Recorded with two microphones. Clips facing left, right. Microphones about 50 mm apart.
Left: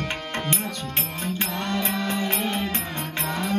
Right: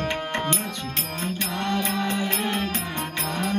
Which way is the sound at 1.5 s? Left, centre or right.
Centre.